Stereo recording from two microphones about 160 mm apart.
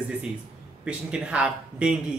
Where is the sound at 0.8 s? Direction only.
5° right (ahead or behind).